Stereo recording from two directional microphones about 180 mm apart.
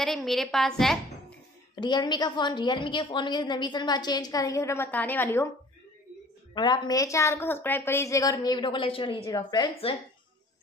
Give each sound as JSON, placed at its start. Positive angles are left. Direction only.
{"t": 0.0, "sound": "a woman's voice", "side_deg": 0}
{"t": 1.8, "sound": "a woman's voice", "side_deg": 25}
{"t": 6.5, "sound": "a woman's voice", "side_deg": 25}